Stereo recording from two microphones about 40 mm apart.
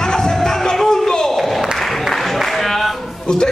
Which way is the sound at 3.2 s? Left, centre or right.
Centre.